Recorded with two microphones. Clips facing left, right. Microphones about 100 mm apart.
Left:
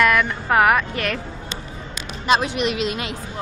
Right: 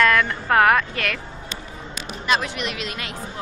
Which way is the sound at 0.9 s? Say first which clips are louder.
Left 2 dB; 25° left (ahead or behind).